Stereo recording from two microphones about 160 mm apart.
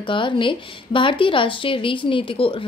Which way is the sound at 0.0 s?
30° left (ahead or behind).